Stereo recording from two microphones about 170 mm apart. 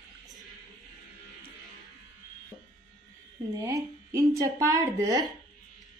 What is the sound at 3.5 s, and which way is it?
A woman's voice, 20° right (ahead or behind).